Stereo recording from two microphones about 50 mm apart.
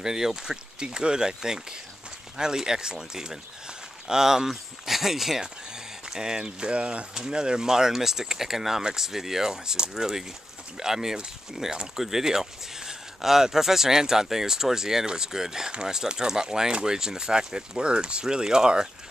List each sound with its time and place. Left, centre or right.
0.0 s speech: centre